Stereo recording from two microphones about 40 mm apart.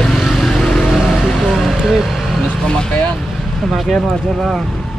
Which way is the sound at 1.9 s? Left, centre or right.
Centre.